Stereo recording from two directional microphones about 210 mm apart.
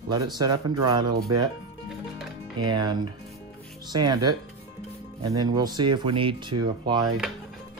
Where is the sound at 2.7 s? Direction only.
20° right (ahead or behind).